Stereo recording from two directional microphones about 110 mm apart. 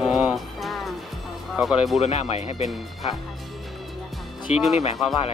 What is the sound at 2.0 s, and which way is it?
Speech, 70° left (ahead or behind).